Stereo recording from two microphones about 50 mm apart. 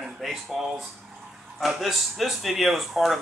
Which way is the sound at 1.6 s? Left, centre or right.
Centre.